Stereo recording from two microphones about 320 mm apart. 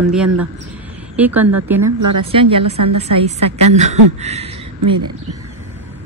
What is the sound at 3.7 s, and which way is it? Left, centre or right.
Speech, right.